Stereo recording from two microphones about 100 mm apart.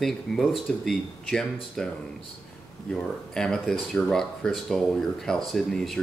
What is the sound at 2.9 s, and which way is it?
Speech, 5° left (ahead or behind).